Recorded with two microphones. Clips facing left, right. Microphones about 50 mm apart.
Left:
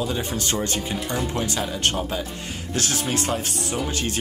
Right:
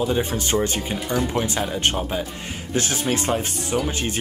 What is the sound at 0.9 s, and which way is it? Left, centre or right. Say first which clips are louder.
Speech: right 3 dB; centre.